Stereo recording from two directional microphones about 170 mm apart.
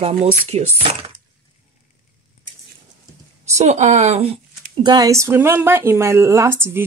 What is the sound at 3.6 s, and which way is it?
Speech, 45° right (ahead or behind).